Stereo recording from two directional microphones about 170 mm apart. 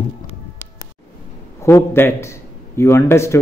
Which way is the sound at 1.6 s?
15° left (ahead or behind).